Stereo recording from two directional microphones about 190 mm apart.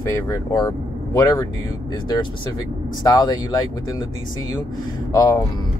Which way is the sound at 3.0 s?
20° left (ahead or behind).